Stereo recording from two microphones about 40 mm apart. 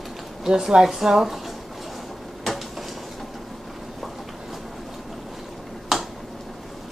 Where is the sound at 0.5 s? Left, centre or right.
Centre.